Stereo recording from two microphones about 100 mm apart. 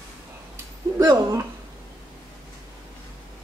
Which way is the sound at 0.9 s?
35° right (ahead or behind).